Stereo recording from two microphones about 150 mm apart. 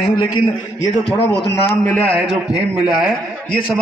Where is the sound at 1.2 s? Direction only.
90° left.